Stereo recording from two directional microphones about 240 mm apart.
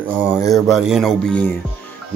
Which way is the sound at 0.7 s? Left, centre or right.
Centre.